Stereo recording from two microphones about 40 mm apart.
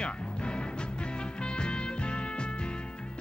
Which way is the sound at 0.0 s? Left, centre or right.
Left.